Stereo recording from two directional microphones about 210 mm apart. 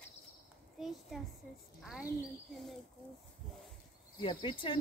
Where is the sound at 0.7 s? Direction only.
Centre (ahead or behind).